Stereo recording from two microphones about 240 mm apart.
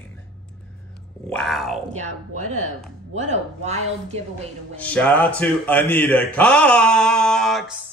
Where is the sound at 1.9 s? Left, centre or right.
Right.